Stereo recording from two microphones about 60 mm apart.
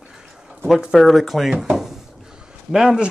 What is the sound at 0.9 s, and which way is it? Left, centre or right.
Speech, centre.